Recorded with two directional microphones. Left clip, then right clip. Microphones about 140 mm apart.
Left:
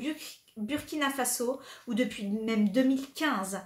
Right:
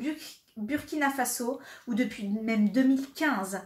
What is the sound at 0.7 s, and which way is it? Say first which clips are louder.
A woman's voice: right 2 dB; 20° left (ahead or behind).